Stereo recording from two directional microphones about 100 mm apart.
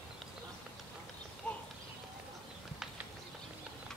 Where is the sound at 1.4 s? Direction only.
10° left (ahead or behind).